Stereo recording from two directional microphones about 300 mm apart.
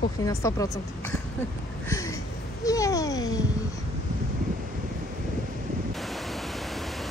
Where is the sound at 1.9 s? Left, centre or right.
Centre.